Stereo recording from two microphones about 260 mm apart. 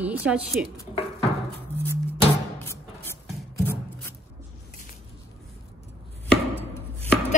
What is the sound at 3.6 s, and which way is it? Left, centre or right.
Rub, centre.